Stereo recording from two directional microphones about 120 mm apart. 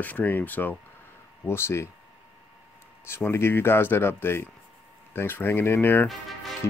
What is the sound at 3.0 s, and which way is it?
Speech, 20° left (ahead or behind).